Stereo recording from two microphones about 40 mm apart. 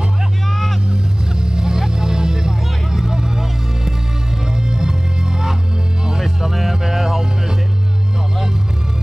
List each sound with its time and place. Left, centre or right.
0.5 s vehicle: centre
1.4 s music: centre